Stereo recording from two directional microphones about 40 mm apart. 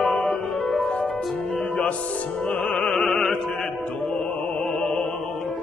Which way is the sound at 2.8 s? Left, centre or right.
Centre.